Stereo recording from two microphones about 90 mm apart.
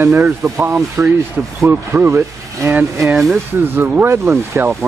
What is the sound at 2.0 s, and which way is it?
Speech, 35° right (ahead or behind).